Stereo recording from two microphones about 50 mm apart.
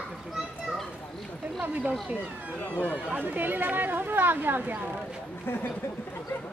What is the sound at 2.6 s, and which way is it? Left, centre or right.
Speech, left.